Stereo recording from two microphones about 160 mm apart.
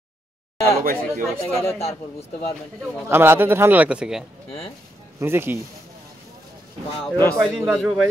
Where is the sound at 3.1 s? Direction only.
15° right (ahead or behind).